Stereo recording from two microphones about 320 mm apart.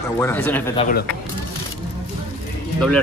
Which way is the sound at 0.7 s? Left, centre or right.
Left.